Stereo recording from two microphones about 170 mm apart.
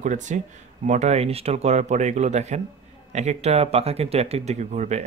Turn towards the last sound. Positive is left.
turn(degrees=-40)  # may be behind; listen again after turning